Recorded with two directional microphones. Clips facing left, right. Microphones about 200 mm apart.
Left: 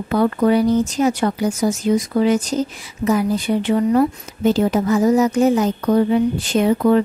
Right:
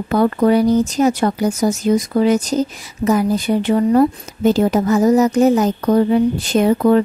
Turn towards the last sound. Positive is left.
turn(degrees=-45)  # may be behind; listen again after turning